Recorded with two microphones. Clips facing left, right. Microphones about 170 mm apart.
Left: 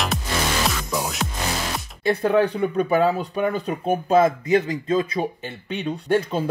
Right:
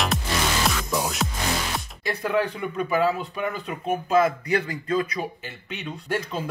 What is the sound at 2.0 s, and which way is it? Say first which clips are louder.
Speech: left 6 dB; 30° left (ahead or behind).